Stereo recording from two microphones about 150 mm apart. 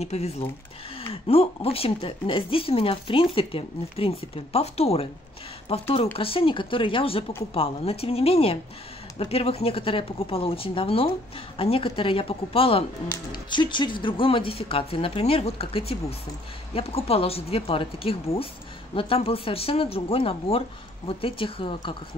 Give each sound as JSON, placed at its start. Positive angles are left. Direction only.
{"t": 0.0, "sound": "speech", "side_deg": 45}